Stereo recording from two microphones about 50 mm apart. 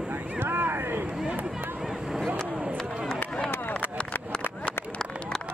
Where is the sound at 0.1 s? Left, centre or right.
Right.